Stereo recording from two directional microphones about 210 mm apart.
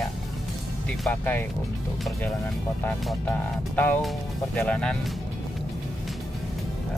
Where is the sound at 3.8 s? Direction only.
5° left (ahead or behind).